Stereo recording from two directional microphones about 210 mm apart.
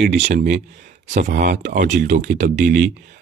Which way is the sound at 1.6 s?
35° right (ahead or behind).